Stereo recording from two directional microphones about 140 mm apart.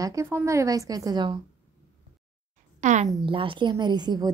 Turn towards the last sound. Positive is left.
turn(degrees=-30)  # may be behind; listen again after turning